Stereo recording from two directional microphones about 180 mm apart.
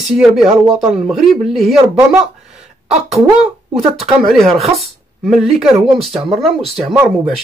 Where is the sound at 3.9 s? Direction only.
Centre (ahead or behind).